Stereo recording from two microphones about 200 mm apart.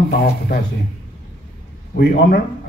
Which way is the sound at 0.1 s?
50° left (ahead or behind).